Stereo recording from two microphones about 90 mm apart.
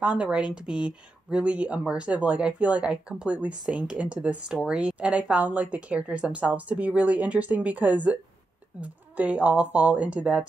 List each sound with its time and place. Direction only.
0.0 s speech: 10° right (ahead or behind)